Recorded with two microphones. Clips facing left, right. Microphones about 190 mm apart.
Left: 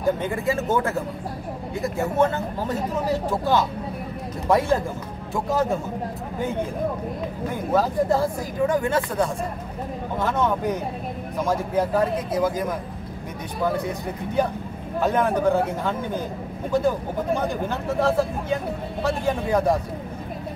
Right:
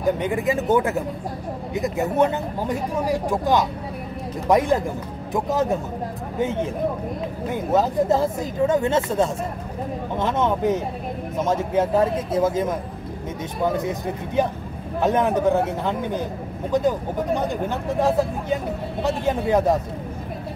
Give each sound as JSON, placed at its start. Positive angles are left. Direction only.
{"t": 0.2, "sound": "speech", "side_deg": -15}
{"t": 7.7, "sound": "speech", "side_deg": -20}